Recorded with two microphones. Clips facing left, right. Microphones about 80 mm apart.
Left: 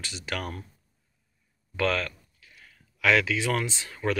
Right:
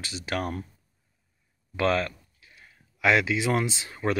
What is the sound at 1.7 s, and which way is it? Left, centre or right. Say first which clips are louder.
Speech: right 2 dB; right.